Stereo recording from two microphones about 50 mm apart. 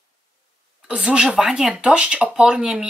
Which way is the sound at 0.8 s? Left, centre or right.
Right.